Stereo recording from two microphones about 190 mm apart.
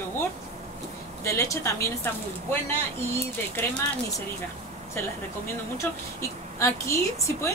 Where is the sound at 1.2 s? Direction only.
15° left (ahead or behind).